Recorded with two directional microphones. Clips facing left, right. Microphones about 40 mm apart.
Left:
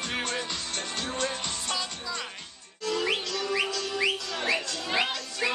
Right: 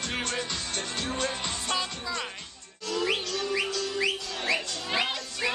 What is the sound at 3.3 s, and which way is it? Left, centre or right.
Music, centre.